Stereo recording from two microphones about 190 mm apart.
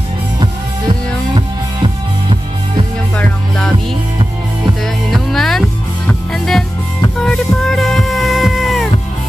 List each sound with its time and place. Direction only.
1.3 s music: 25° right (ahead or behind)
3.2 s music: 5° left (ahead or behind)
5.1 s music: centre (ahead or behind)